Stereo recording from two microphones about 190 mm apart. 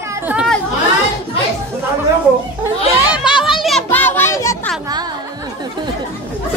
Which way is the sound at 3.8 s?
10° left (ahead or behind).